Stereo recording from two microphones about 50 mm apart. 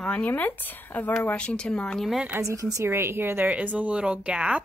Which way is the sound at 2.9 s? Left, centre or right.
Right.